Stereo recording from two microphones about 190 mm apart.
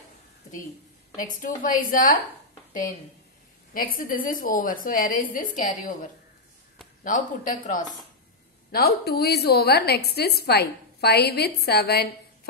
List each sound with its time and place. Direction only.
1.4 s a woman's voice: 45° left (ahead or behind)
3.7 s a woman's voice: 50° left (ahead or behind)
7.0 s a woman's voice: 45° left (ahead or behind)
8.7 s a woman's voice: 55° left (ahead or behind)